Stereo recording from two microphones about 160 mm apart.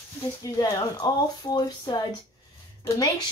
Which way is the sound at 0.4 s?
20° left (ahead or behind).